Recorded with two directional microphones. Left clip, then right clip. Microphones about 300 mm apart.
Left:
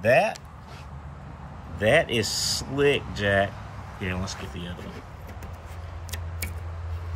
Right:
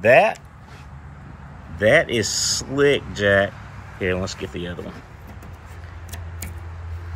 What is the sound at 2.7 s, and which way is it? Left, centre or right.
Speech, right.